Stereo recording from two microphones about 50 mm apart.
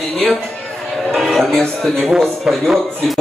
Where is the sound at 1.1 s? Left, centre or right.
Centre.